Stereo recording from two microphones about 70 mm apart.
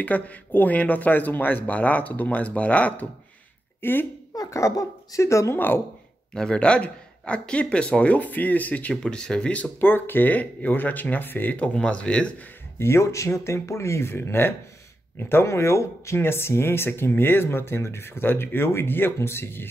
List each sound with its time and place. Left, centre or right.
0.0 s speech: left
3.8 s speech: left
4.4 s speech: left
6.3 s speech: centre
9.8 s speech: left; by 12.4 s centre
12.7 s speech: left